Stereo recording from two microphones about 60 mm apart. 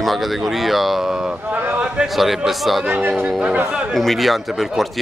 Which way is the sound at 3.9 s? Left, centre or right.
Centre.